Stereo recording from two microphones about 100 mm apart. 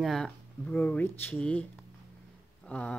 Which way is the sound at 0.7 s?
15° left (ahead or behind).